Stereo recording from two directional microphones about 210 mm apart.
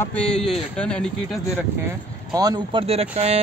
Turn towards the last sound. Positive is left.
turn(degrees=-30)  # may be behind; listen again after turning